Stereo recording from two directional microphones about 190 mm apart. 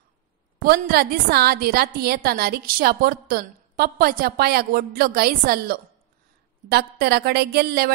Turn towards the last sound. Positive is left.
turn(degrees=-55)  # may be behind; listen again after turning